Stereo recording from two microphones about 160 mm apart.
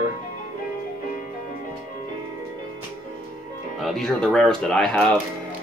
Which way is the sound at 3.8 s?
Centre (ahead or behind).